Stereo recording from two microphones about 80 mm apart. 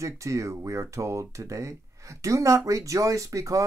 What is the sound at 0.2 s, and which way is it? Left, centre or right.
Speech, right.